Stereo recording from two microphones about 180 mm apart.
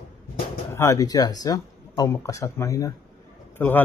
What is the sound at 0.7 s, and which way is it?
Speech, 20° left (ahead or behind).